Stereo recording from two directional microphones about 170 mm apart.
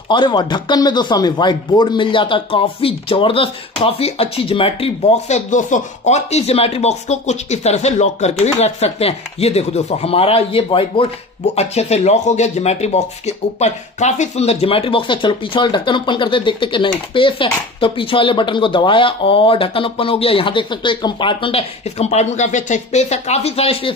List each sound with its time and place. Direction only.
0.1 s speech: 25° left (ahead or behind)